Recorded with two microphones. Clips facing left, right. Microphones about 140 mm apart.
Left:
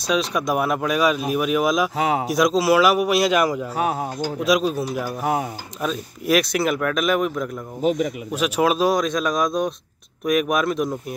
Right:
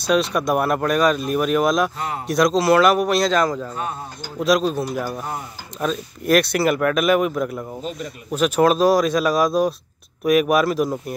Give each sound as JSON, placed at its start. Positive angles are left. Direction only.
{"t": 0.0, "sound": "speech", "side_deg": 0}
{"t": 2.0, "sound": "speech", "side_deg": 90}
{"t": 2.2, "sound": "speech", "side_deg": 5}
{"t": 3.7, "sound": "speech", "side_deg": 80}
{"t": 4.4, "sound": "speech", "side_deg": 5}
{"t": 5.2, "sound": "speech", "side_deg": 75}
{"t": 5.8, "sound": "speech", "side_deg": 5}
{"t": 7.8, "sound": "speech", "side_deg": 90}
{"t": 8.3, "sound": "speech", "side_deg": 0}